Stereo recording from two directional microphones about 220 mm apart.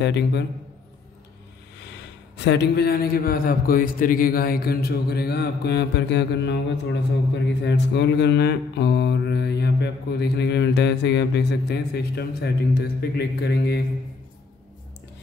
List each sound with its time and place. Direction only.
0.0 s mantra: 50° left (ahead or behind)
2.3 s mantra: 50° left (ahead or behind)